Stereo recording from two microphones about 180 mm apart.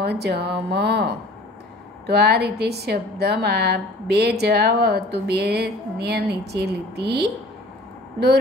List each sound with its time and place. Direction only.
0.0 s a woman's voice: 65° right (ahead or behind)